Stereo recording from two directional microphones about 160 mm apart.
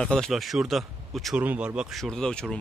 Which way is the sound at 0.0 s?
5° left (ahead or behind).